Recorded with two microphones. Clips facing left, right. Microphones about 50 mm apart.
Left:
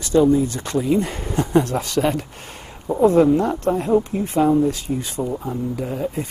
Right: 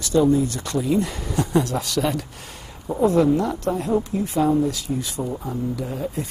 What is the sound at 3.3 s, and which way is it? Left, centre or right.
Speech, left.